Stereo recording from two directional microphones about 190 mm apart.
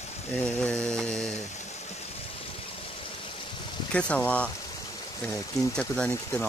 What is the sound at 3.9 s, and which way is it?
Speech, 5° left (ahead or behind).